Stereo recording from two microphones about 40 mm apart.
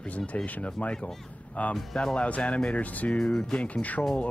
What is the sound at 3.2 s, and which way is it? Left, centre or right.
Speech, left.